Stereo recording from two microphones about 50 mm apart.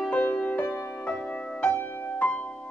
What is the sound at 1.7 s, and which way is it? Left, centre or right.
Music, left.